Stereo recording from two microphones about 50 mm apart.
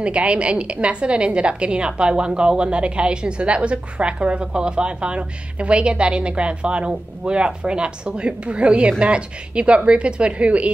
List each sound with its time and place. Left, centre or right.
0.0 s a woman's voice: right